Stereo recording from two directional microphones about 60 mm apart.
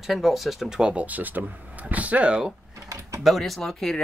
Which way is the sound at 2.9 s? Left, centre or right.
Right.